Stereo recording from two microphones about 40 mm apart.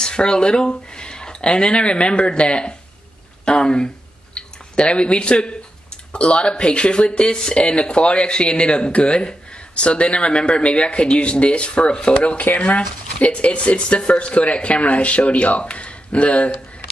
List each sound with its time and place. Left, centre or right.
0.0 s speech: centre
3.4 s a sound: left
6.1 s speech: left